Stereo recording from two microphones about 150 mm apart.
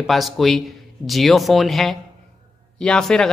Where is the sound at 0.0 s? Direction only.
Centre (ahead or behind).